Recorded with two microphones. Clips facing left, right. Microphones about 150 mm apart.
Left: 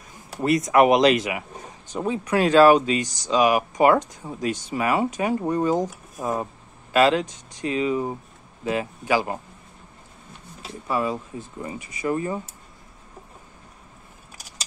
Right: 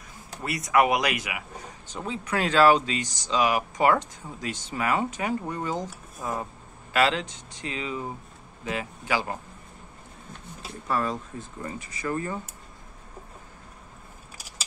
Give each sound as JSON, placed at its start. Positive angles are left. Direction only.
{"t": 0.4, "sound": "speech", "side_deg": 20}
{"t": 10.9, "sound": "speech", "side_deg": 10}